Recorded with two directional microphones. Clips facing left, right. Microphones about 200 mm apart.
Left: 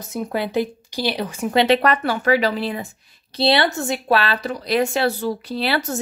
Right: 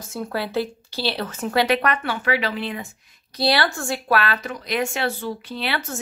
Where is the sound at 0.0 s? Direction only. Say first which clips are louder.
Left 3 dB; 20° left (ahead or behind).